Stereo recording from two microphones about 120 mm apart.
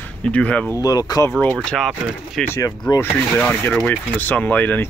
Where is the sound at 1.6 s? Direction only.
5° left (ahead or behind).